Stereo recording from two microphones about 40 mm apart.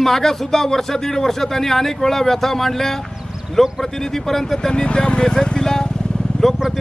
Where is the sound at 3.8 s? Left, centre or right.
Centre.